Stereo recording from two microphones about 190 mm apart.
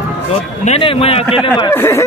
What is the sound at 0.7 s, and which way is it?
Speech, 30° left (ahead or behind).